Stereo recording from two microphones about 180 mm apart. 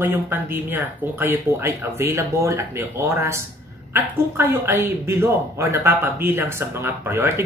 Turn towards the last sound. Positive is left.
turn(degrees=-15)  # may be behind; listen again after turning